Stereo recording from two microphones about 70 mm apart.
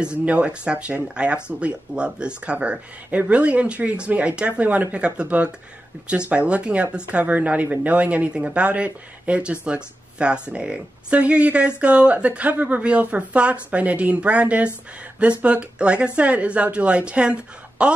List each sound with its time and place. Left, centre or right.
0.2 s speech: centre